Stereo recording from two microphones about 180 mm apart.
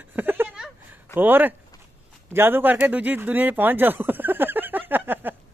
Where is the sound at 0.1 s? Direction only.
10° right (ahead or behind).